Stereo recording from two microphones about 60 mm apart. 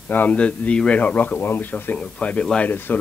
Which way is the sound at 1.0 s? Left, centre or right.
Left.